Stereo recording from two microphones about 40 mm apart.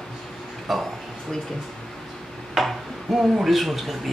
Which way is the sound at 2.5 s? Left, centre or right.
Centre.